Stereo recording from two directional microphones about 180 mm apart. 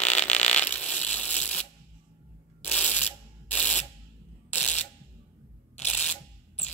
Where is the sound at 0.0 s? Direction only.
5° left (ahead or behind).